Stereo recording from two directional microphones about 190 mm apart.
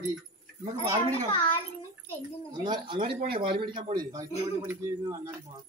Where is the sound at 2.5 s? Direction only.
25° right (ahead or behind).